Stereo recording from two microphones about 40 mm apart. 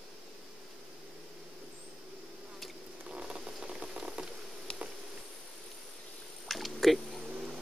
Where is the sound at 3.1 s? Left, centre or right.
Right.